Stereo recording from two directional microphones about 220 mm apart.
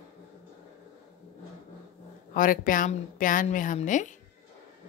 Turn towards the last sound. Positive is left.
turn(degrees=35)  # may be behind; listen again after turning